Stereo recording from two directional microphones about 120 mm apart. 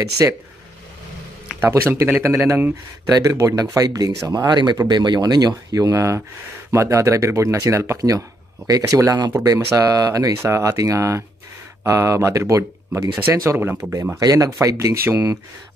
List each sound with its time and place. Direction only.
0.2 s speech: 25° right (ahead or behind)
1.6 s speech: 20° right (ahead or behind)